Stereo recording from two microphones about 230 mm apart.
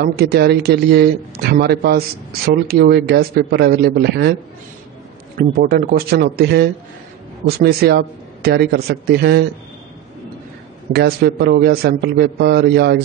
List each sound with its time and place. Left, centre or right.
0.0 s a man's voice: right
5.6 s a man's voice: right
10.9 s a man's voice: right